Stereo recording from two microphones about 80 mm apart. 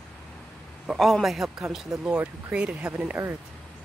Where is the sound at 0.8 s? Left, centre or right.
Centre.